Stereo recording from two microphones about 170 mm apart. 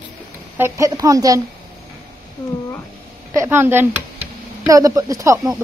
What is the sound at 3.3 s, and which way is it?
A woman's voice, 15° right (ahead or behind).